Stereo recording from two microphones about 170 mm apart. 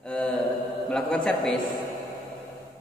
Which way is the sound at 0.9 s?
5° left (ahead or behind).